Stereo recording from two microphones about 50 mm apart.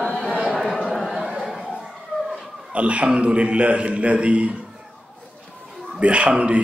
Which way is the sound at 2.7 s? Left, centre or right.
Right.